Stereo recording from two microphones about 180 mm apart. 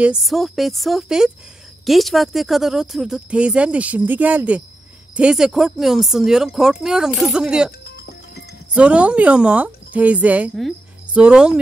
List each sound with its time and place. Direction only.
0.0 s speech: 5° right (ahead or behind)
7.8 s music: 65° left (ahead or behind)
8.7 s a woman's voice: 5° right (ahead or behind)